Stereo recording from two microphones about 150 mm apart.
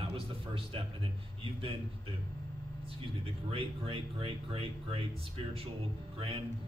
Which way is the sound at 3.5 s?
35° right (ahead or behind).